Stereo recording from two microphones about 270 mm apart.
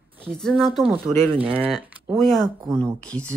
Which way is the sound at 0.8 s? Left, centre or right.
Centre.